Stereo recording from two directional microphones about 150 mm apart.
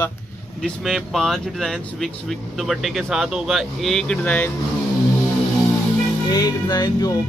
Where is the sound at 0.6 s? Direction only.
Centre (ahead or behind).